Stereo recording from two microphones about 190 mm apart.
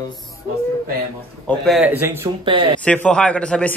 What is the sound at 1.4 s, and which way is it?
Speech, centre (ahead or behind).